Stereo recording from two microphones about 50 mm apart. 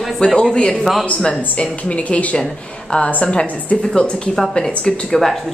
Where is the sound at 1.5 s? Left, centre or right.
Left.